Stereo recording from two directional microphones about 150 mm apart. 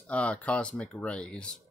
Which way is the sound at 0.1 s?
10° left (ahead or behind).